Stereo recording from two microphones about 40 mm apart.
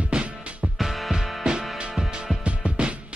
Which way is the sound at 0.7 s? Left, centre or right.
Centre.